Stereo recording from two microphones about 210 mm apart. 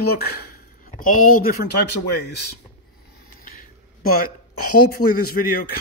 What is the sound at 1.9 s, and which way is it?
Speech, 55° left (ahead or behind).